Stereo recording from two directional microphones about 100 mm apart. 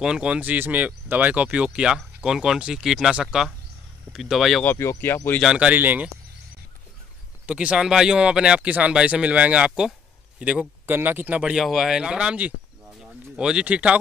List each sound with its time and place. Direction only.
0.0 s speech: 10° right (ahead or behind)
4.6 s speech: 25° left (ahead or behind)
5.4 s speech: 10° right (ahead or behind)
7.4 s speech: 10° right (ahead or behind)
9.7 s speech: centre (ahead or behind)
10.4 s speech: 15° right (ahead or behind)
11.5 s speech: 5° right (ahead or behind)